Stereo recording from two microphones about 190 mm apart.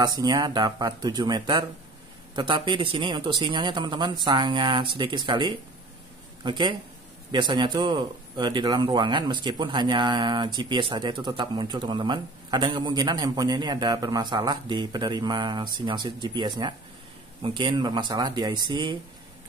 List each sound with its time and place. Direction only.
0.0 s a man's voice: 20° right (ahead or behind)